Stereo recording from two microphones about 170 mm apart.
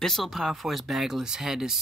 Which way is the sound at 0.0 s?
Centre (ahead or behind).